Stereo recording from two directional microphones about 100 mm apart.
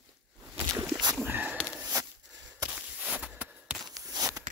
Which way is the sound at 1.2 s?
20° right (ahead or behind).